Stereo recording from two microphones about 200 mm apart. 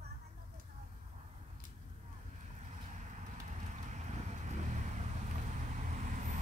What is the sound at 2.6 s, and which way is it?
Vehicle, 35° right (ahead or behind).